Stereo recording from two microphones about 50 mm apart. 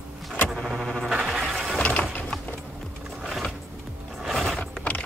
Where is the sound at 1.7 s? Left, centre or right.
Left.